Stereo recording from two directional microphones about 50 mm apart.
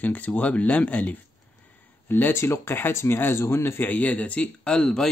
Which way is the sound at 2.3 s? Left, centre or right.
Left.